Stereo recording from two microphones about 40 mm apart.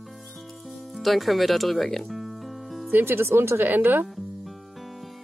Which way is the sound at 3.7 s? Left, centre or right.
Right.